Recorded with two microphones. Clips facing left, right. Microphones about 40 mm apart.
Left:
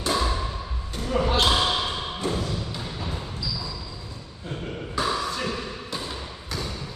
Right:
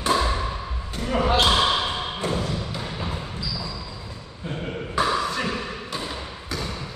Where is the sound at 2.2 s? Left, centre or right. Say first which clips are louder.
Right 1 dB; right.